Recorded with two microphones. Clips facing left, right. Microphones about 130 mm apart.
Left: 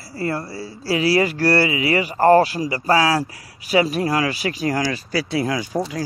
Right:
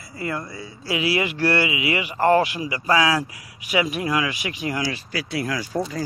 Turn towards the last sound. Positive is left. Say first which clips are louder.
# left 3 dB
turn(degrees=20)  # may be behind; listen again after turning